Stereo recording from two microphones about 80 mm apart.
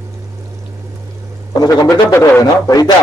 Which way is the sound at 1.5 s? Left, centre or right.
Left.